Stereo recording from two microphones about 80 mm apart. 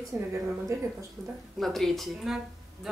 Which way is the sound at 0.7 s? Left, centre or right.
Right.